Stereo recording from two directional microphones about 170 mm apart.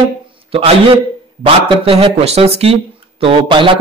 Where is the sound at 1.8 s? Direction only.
30° right (ahead or behind).